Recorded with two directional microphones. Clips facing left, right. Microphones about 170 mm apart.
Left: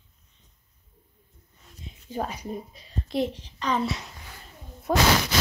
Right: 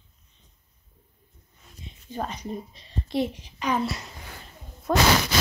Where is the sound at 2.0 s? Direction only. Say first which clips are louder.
Left 1 dB; 10° left (ahead or behind).